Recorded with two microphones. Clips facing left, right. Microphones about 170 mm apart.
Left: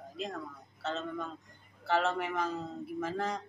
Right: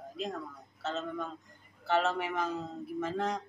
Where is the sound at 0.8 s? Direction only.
Centre (ahead or behind).